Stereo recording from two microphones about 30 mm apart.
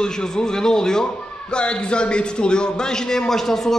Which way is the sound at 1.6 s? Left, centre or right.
Left.